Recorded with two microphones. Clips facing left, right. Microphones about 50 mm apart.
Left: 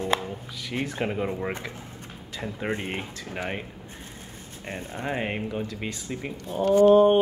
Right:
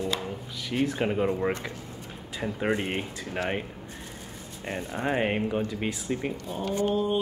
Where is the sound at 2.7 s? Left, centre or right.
Right.